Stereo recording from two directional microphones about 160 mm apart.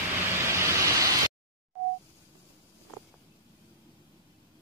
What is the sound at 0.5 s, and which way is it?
Vehicle, 15° right (ahead or behind).